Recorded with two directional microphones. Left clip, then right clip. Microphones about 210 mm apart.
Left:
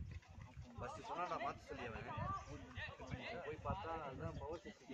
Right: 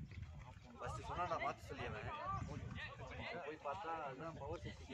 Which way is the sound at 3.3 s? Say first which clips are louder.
Even; 40° right (ahead or behind).